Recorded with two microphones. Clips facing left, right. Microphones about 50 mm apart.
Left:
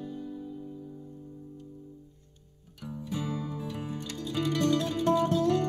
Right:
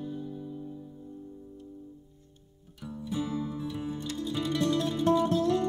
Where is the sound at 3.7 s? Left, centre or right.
Left.